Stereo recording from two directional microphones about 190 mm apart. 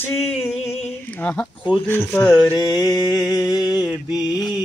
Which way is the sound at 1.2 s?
10° left (ahead or behind).